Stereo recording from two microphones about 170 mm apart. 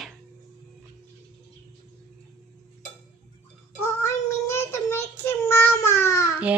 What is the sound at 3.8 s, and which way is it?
Child singing, 15° left (ahead or behind).